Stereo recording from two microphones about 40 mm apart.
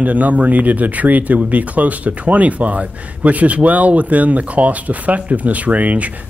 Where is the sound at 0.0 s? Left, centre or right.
Right.